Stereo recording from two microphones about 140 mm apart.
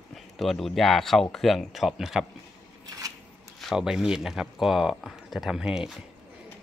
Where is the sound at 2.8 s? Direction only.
25° right (ahead or behind).